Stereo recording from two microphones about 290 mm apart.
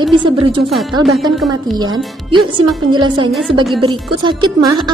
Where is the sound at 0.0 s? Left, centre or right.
Centre.